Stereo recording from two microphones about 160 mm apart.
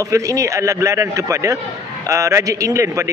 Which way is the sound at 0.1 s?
20° right (ahead or behind).